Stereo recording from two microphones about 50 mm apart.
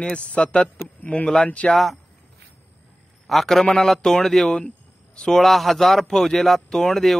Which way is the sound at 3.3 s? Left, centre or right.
Centre.